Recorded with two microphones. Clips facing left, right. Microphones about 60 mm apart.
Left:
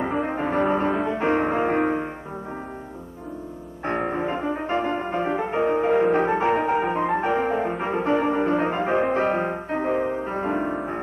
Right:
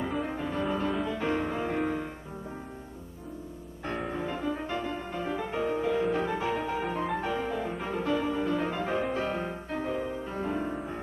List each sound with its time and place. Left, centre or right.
0.0 s music: left
4.1 s music: left